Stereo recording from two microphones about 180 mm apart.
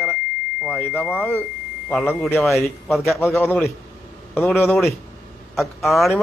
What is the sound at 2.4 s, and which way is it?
Speech, centre (ahead or behind).